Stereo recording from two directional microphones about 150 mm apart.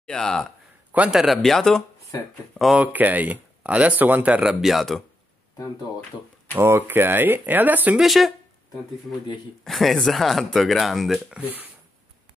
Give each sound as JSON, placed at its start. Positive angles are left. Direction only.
{"t": 0.0, "sound": "speech", "side_deg": 5}
{"t": 0.9, "sound": "speech", "side_deg": -5}
{"t": 6.5, "sound": "speech", "side_deg": -15}
{"t": 9.7, "sound": "speech", "side_deg": 0}